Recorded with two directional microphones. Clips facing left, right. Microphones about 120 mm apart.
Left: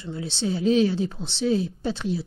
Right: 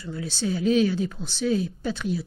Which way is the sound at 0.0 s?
25° left (ahead or behind).